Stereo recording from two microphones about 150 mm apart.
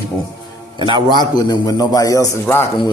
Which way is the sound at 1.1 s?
30° left (ahead or behind).